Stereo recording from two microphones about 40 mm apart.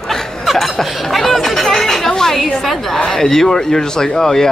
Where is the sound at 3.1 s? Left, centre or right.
Centre.